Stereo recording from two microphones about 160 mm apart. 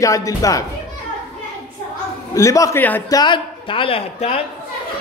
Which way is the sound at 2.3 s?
20° left (ahead or behind).